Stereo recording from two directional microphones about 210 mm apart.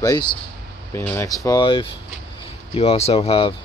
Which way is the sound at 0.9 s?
10° left (ahead or behind).